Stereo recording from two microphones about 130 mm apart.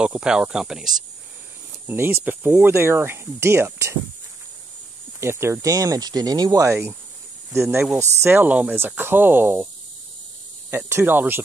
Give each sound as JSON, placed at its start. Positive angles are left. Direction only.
{"t": 0.0, "sound": "speech", "side_deg": -5}
{"t": 1.9, "sound": "speech", "side_deg": -15}
{"t": 5.2, "sound": "speech", "side_deg": -20}
{"t": 8.0, "sound": "speech", "side_deg": -20}
{"t": 10.7, "sound": "speech", "side_deg": -20}